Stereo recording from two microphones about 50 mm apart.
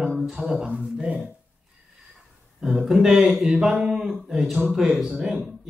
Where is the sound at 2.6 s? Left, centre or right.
Centre.